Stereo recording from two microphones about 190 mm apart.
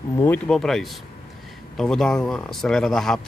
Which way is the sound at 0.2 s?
5° left (ahead or behind).